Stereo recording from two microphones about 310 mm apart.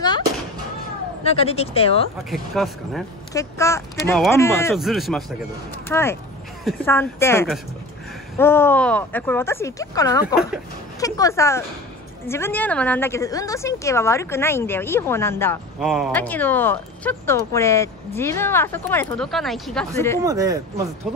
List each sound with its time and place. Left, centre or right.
1.2 s speech: centre
2.3 s a woman's voice: centre
20.2 s speech: centre